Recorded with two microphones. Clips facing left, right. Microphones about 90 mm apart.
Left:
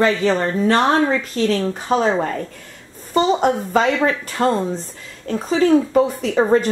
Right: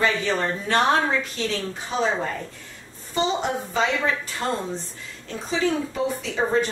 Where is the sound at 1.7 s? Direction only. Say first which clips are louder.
Left 9 dB; 50° left (ahead or behind).